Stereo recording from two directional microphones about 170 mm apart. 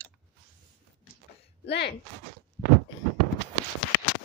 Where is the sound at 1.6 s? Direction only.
80° left.